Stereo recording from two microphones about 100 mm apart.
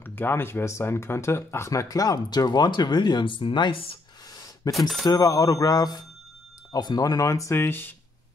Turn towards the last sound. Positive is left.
turn(degrees=20)  # may be behind; listen again after turning